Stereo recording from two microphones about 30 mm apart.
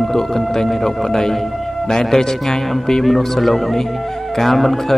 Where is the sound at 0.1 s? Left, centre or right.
Centre.